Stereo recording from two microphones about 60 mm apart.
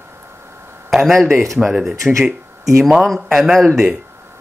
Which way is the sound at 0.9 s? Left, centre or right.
Centre.